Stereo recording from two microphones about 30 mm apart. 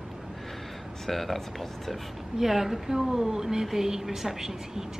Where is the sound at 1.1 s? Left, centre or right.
Centre.